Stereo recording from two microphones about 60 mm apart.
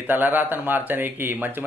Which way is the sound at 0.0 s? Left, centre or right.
Right.